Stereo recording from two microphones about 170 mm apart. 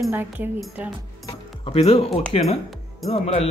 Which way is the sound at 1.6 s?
35° left (ahead or behind).